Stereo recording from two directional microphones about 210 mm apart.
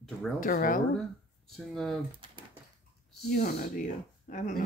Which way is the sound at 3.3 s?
45° left (ahead or behind).